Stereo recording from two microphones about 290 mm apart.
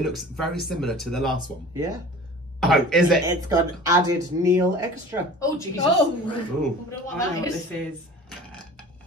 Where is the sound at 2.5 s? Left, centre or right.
Centre.